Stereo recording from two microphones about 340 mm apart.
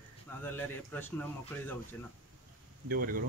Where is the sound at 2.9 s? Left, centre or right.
Right.